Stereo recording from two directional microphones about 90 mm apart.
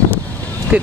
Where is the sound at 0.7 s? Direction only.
15° right (ahead or behind).